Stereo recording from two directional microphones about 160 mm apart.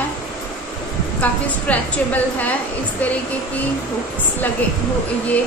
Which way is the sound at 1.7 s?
10° left (ahead or behind).